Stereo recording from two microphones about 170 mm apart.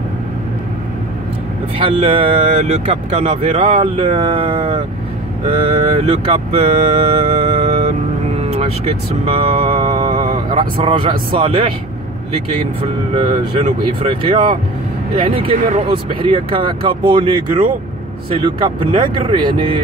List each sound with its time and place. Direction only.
1.8 s speech: 30° right (ahead or behind)
13.2 s speech: 35° right (ahead or behind)
18.9 s speech: 30° right (ahead or behind)